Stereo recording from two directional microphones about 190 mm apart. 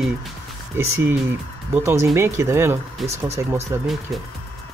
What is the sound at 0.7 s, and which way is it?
Speech, 10° right (ahead or behind).